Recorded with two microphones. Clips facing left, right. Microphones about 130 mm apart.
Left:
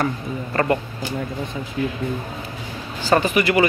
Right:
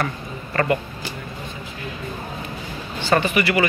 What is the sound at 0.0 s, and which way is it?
Speech, 20° left (ahead or behind).